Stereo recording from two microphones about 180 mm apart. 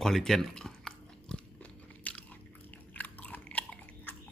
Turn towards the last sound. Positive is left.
turn(degrees=5)  # may be behind; listen again after turning